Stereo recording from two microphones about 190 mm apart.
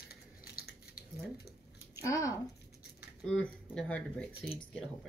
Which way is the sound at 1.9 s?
15° left (ahead or behind).